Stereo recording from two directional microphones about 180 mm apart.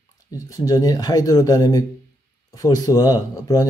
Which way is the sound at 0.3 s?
20° left (ahead or behind).